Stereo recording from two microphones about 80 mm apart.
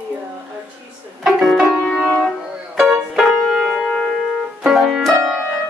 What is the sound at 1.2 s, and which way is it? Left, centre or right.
Music, centre.